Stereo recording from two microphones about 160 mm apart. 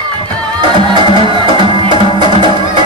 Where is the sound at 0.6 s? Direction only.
30° right (ahead or behind).